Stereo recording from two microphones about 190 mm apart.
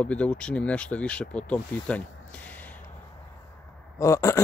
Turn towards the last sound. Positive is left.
turn(degrees=15)  # may be behind; listen again after turning